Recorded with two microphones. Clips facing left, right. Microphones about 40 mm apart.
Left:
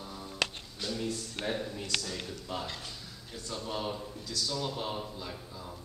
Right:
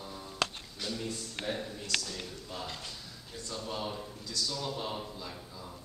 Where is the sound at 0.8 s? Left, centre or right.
Centre.